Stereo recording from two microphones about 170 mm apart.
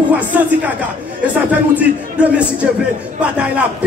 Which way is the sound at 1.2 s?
10° right (ahead or behind).